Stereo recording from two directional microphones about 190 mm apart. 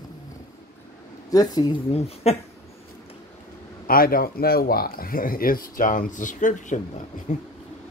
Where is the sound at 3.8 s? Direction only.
50° left (ahead or behind).